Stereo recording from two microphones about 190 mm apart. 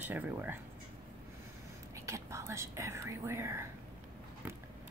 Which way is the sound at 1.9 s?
15° right (ahead or behind).